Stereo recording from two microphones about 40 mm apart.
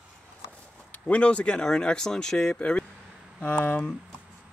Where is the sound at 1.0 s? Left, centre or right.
Left; by 2.5 s centre.